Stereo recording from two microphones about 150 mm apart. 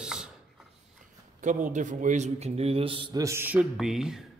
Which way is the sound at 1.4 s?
55° right (ahead or behind).